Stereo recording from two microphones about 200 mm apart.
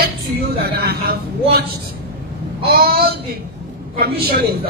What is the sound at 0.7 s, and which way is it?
Speech, 50° right (ahead or behind).